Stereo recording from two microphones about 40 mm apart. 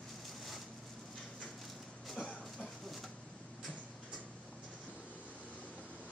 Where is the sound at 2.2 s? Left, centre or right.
Centre.